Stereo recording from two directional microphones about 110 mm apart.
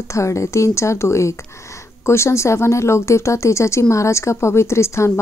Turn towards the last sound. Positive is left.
turn(degrees=25)  # may be behind; listen again after turning